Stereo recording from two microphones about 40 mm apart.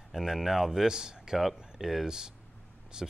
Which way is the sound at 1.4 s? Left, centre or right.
Centre.